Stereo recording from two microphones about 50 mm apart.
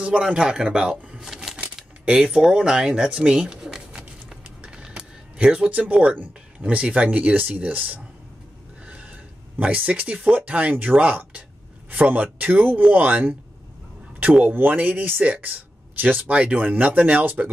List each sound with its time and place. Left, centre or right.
0.0 s a man's voice: centre
1.2 s typewriter: centre
2.0 s speech: centre
4.6 s a sound: centre
5.7 s speech: right
8.8 s a sound: right
10.3 s speech: right
14.4 s speech: right
16.2 s speech: right